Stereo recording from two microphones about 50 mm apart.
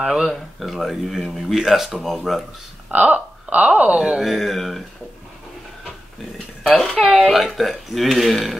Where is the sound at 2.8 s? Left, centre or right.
Right.